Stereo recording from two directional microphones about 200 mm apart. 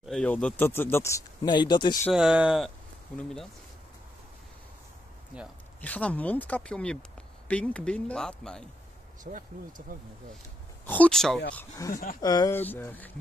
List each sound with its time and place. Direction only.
0.0 s speech: 5° left (ahead or behind); by 2.0 s 20° left (ahead or behind)
2.1 s speech: 5° right (ahead or behind)
5.3 s speech: 5° right (ahead or behind)
5.8 s speech: 10° left (ahead or behind)
9.2 s speech: 40° right (ahead or behind)
10.9 s speech: 5° left (ahead or behind)
11.9 s speech: 45° left (ahead or behind)
12.2 s speech: 20° left (ahead or behind)